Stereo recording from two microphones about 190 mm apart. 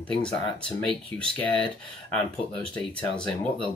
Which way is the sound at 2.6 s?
5° left (ahead or behind).